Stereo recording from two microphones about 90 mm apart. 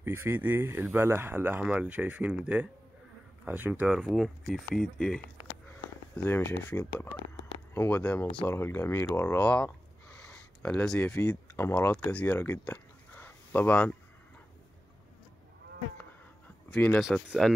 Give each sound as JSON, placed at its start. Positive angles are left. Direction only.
{"t": 0.0, "sound": "speech", "side_deg": -25}
{"t": 1.6, "sound": "speech", "side_deg": -15}
{"t": 3.8, "sound": "speech", "side_deg": -10}
{"t": 6.2, "sound": "speech", "side_deg": 25}
{"t": 9.4, "sound": "a sound", "side_deg": 15}
{"t": 11.0, "sound": "speech", "side_deg": 15}
{"t": 11.2, "sound": "a sound", "side_deg": 30}
{"t": 11.7, "sound": "speech", "side_deg": 15}
{"t": 12.4, "sound": "a sound", "side_deg": 20}
{"t": 16.7, "sound": "speech", "side_deg": 15}
{"t": 17.4, "sound": "speech", "side_deg": 5}